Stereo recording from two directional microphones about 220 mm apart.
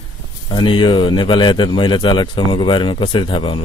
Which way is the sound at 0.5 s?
20° left (ahead or behind).